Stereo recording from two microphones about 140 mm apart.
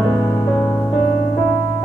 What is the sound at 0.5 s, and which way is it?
Music, 20° left (ahead or behind).